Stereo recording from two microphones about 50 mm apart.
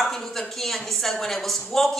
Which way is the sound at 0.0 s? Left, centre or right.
Centre.